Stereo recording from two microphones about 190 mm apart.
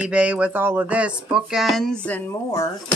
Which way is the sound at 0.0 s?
5° right (ahead or behind).